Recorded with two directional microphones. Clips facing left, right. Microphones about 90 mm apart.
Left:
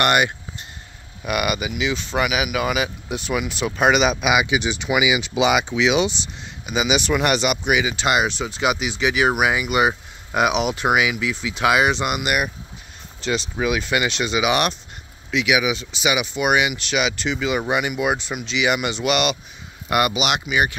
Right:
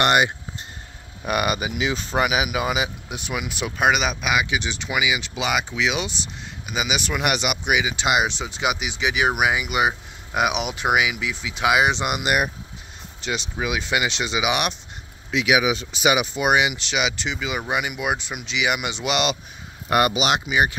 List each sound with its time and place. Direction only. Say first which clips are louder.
0.0 s a sound: even; 25° right (ahead or behind)
1.2 s speech: even; 35° right (ahead or behind)
3.1 s speech: left 5 dB; 10° right (ahead or behind); by 12.4 s 25° right (ahead or behind)
13.2 s speech: left 4 dB; 10° right (ahead or behind)
15.3 s speech: even; 35° right (ahead or behind)
15.8 s speech: right 2 dB; 45° right (ahead or behind)
16.4 s speech: left 1 dB; 25° right (ahead or behind)
17.4 s speech: left 4 dB; 5° right (ahead or behind); by 19.3 s 20° right (ahead or behind)
19.9 s speech: right 1 dB; 35° right (ahead or behind)